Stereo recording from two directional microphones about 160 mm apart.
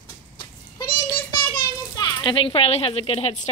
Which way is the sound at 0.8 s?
25° left (ahead or behind).